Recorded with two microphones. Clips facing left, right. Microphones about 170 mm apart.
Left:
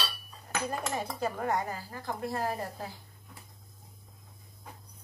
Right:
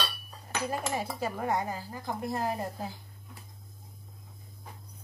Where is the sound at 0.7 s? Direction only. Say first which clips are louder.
Right 2 dB; 10° right (ahead or behind).